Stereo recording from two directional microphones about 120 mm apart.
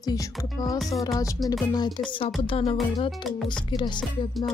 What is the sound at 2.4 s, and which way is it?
Music, 50° left (ahead or behind).